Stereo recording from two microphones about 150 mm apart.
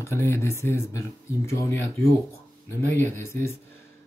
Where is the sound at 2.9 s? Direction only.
15° left (ahead or behind).